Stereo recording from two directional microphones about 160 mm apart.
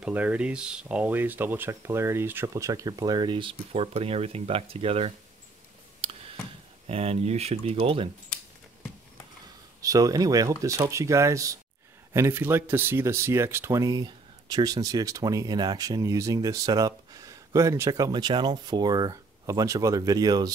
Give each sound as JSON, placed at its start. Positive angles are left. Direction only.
{"t": 0.0, "sound": "speech", "side_deg": -10}
{"t": 6.0, "sound": "tick", "side_deg": -40}
{"t": 6.9, "sound": "speech", "side_deg": -40}
{"t": 9.8, "sound": "speech", "side_deg": -20}